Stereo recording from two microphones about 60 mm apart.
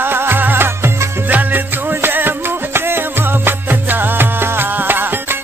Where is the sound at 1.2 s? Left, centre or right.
Right.